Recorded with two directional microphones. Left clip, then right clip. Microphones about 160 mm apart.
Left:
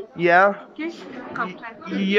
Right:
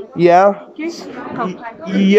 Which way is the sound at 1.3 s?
40° right (ahead or behind).